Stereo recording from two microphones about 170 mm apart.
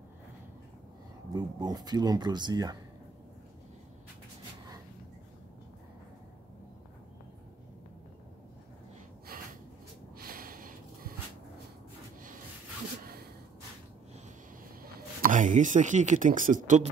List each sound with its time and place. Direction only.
1.3 s speech: 25° right (ahead or behind)
9.3 s gasp: 60° right (ahead or behind)
10.1 s snort: 60° right (ahead or behind)
14.8 s speech: 55° right (ahead or behind)